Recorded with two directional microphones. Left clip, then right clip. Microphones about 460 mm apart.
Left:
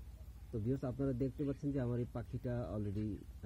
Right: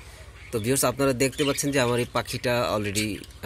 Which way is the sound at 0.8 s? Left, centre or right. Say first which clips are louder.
Right 17 dB; centre.